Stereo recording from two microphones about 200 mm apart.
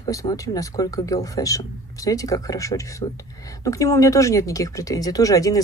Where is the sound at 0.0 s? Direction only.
15° left (ahead or behind).